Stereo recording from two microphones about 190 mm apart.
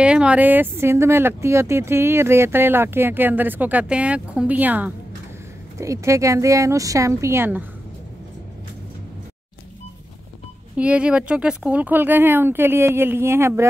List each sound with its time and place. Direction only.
0.0 s speech: 5° right (ahead or behind)
10.8 s speech: 5° right (ahead or behind)